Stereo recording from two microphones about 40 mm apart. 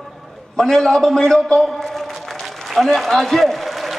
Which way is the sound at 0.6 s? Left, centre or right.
Centre.